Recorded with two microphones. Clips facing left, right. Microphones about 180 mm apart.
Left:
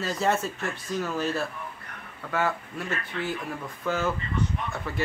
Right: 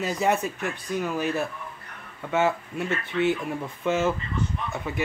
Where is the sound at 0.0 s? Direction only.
15° right (ahead or behind).